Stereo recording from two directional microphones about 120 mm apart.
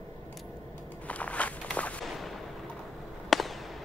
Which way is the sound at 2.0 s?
Centre (ahead or behind).